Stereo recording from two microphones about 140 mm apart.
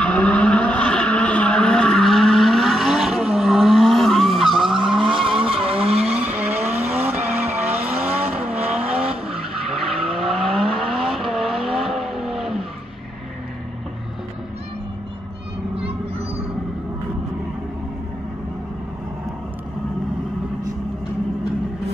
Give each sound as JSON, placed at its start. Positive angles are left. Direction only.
{"t": 0.0, "sound": "vehicle", "side_deg": 10}
{"t": 5.0, "sound": "vehicle", "side_deg": -40}
{"t": 5.9, "sound": "vehicle", "side_deg": -10}
{"t": 9.7, "sound": "vehicle", "side_deg": 0}